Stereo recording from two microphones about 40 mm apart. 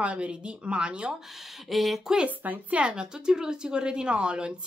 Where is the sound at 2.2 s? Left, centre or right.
Right.